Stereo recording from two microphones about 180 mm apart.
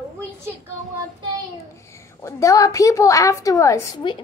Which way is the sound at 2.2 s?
20° left (ahead or behind).